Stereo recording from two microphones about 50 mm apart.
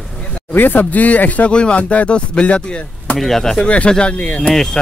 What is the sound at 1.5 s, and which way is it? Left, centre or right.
Speech, left.